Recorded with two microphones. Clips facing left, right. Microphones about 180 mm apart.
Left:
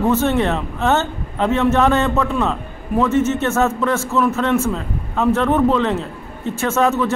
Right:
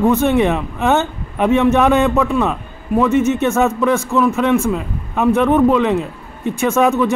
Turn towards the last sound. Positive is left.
turn(degrees=-15)  # may be behind; listen again after turning